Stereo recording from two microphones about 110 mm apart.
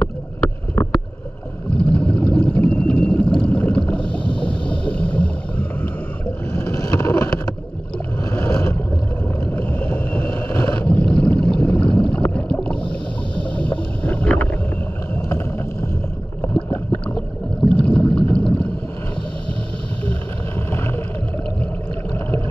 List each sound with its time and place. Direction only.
0.0 s boat: 10° left (ahead or behind)
1.8 s a sound: 10° left (ahead or behind)
4.4 s boat: 10° left (ahead or behind)
6.5 s boat: 25° left (ahead or behind)
8.3 s vehicle: 25° left (ahead or behind)
9.5 s boat: 15° left (ahead or behind)
16.7 s a sound: 20° left (ahead or behind)
17.6 s boat: 10° left (ahead or behind)